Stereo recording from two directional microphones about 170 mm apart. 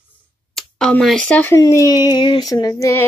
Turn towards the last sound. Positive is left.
turn(degrees=20)  # may be behind; listen again after turning